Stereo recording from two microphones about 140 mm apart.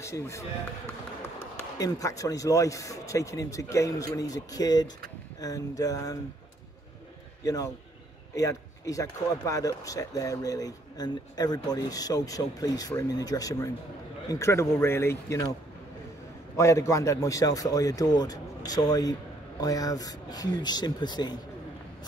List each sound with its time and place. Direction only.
0.0 s speech: 20° left (ahead or behind)
1.8 s speech: 25° left (ahead or behind)
7.4 s speech: 25° left (ahead or behind)
16.5 s speech: 20° left (ahead or behind)